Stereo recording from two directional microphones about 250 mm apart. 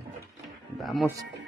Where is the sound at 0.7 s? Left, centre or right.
Centre.